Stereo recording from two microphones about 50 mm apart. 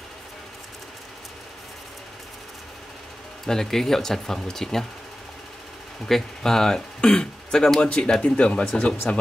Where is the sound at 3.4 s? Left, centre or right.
Centre.